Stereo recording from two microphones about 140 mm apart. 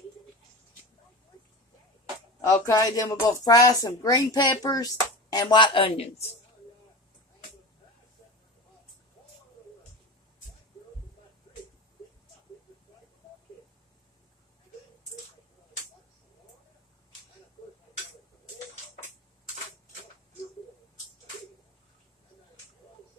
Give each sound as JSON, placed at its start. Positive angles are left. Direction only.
{"t": 2.4, "sound": "speech", "side_deg": 25}